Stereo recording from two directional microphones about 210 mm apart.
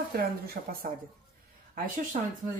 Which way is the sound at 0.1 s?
45° right (ahead or behind).